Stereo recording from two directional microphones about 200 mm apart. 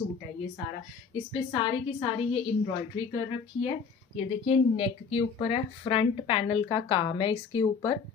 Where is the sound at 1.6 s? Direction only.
25° left (ahead or behind).